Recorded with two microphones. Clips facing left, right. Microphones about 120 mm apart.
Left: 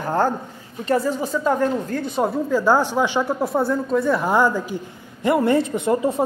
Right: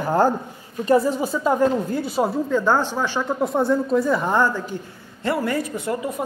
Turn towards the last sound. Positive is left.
turn(degrees=30)  # may be behind; listen again after turning